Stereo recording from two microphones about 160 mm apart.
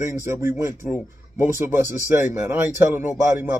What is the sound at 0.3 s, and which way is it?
Speech, 15° right (ahead or behind).